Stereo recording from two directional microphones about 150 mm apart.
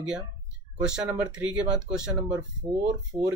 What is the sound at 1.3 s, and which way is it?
Speech, 5° right (ahead or behind).